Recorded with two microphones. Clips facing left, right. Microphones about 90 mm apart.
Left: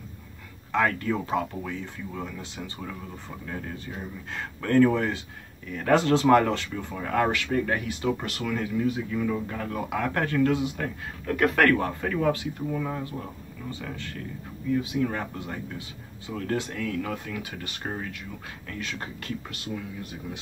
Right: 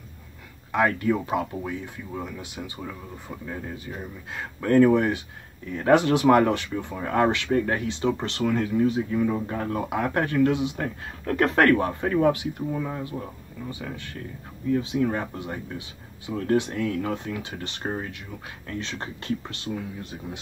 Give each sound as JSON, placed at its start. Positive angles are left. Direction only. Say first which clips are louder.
{"t": 0.7, "sound": "speech", "louder": "right 2 dB", "side_deg": -20}
{"t": 11.2, "sound": "speech", "louder": "right 2 dB", "side_deg": -35}
{"t": 14.8, "sound": "speech", "louder": "right 2 dB", "side_deg": -30}